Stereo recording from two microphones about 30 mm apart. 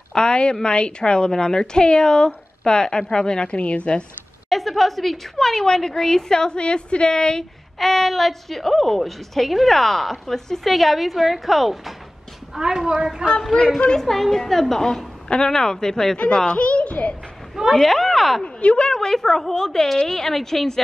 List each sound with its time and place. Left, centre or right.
0.1 s a woman's voice: left
3.4 s a woman's voice: left
4.5 s a woman's voice: centre
6.5 s a woman's voice: left
7.8 s a woman's voice: centre
10.7 s a woman's voice: centre
12.5 s speech: centre
13.9 s a woman's voice: centre
15.2 s a woman's voice: left
16.5 s a child's voice: left
17.7 s a woman's voice: centre
18.6 s a woman's voice: left
18.9 s a woman's voice: centre